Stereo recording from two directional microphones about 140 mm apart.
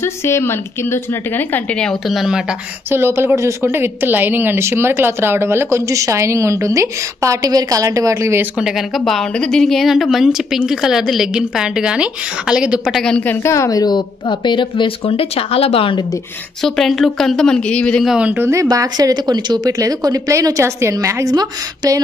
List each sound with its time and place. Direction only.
0.0 s a woman's voice: 20° left (ahead or behind); by 2.5 s 5° right (ahead or behind)
2.9 s a woman's voice: 15° right (ahead or behind)
8.5 s a woman's voice: 5° right (ahead or behind)
13.0 s a woman's voice: 10° left (ahead or behind); by 16.2 s 35° left (ahead or behind)
16.6 s a woman's voice: centre (ahead or behind)
18.1 s a woman's voice: 10° right (ahead or behind); by 22.0 s 25° right (ahead or behind)